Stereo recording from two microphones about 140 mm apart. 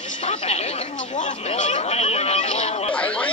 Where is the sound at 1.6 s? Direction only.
55° left (ahead or behind).